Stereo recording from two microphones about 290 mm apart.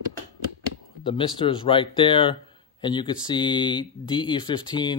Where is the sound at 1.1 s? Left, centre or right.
Centre.